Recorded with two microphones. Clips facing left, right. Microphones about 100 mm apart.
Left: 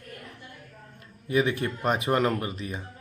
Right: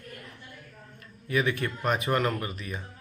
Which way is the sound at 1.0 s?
25° left (ahead or behind).